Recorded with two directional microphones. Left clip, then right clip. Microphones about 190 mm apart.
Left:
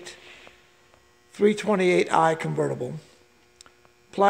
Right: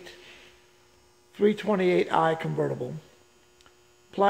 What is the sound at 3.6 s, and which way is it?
Hum, 10° left (ahead or behind).